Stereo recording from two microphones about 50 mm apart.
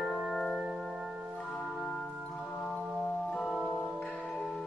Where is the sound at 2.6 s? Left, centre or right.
Centre.